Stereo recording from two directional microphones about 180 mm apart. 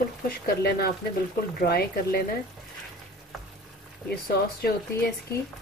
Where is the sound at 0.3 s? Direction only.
60° left (ahead or behind).